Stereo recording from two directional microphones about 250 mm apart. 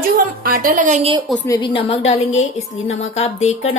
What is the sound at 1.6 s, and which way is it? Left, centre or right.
Speech, centre.